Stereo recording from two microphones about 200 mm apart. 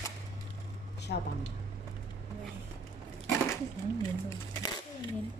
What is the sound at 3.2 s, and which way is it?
Speech, 15° left (ahead or behind).